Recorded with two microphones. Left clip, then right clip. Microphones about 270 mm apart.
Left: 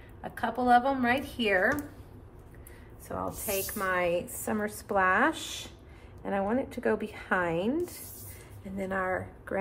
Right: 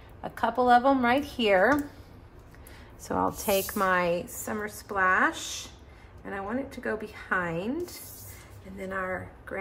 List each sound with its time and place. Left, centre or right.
0.4 s speech: centre
3.1 s speech: right
4.5 s a woman's voice: centre